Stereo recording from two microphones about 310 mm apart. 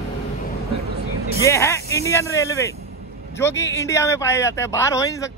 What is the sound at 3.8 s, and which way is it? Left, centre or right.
Speech, centre.